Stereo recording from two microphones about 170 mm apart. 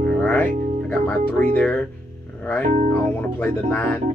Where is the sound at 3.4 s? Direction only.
10° left (ahead or behind).